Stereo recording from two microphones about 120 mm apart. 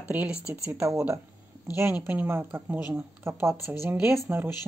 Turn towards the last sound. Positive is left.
turn(degrees=-15)  # may be behind; listen again after turning